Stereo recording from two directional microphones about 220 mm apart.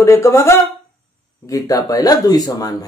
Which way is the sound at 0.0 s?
15° left (ahead or behind).